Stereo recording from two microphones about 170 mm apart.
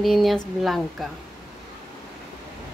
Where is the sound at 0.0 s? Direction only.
Centre (ahead or behind).